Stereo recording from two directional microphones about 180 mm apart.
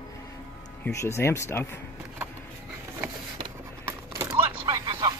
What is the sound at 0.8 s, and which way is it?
Speech, 15° left (ahead or behind).